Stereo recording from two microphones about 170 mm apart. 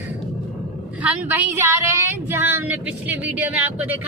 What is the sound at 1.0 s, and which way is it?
Speech, 10° right (ahead or behind).